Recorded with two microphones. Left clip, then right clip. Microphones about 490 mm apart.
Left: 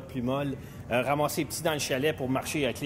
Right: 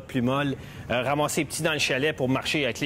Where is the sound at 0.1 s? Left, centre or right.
Right.